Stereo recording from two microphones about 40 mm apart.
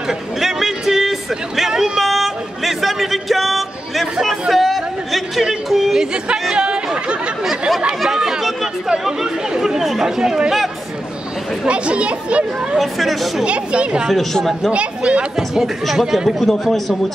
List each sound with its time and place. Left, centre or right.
0.4 s a sound: centre
1.6 s vehicle: centre
2.0 s a sound: centre
5.7 s speech: centre
5.9 s speech: centre
6.5 s chatter: right
9.6 s speech: centre
11.6 s speech: right
12.7 s a man's voice: centre
13.5 s speech: right
14.3 s a man's voice: centre
14.7 s speech: right
15.3 s a man's voice: centre